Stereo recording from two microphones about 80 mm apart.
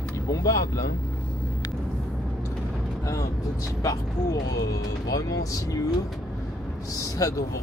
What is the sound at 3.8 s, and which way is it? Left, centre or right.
Speech, left.